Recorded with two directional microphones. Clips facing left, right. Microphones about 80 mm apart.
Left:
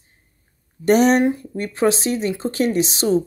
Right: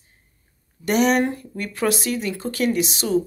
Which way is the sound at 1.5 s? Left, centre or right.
Left.